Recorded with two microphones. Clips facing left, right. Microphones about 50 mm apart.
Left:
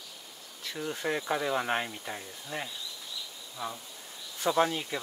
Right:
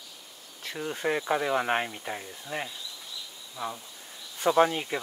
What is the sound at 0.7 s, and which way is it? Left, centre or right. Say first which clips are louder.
Speech: right 3 dB; centre.